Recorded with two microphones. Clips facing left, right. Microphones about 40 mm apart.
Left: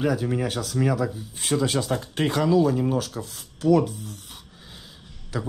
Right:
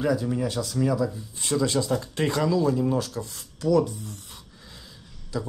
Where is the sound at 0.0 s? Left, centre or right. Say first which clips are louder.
Left 1 dB; left.